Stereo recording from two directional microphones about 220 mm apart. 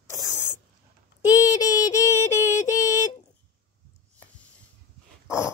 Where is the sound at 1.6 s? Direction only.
15° left (ahead or behind).